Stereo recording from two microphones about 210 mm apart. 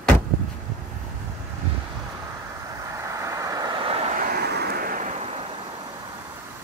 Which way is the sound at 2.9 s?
15° right (ahead or behind).